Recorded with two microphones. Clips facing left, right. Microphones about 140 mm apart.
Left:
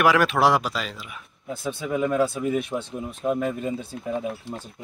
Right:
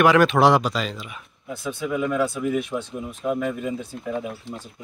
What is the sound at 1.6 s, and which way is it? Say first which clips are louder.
Speech: even; 35° left (ahead or behind).